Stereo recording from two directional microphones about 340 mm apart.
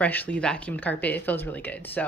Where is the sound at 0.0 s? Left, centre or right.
Centre.